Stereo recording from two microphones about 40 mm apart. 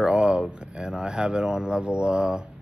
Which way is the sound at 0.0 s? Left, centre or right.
Right.